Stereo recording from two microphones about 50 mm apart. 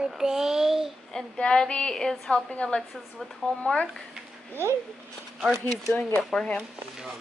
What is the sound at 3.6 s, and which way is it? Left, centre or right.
Speech, centre.